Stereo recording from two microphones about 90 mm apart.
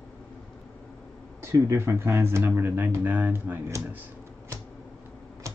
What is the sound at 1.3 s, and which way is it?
Speech, 35° right (ahead or behind).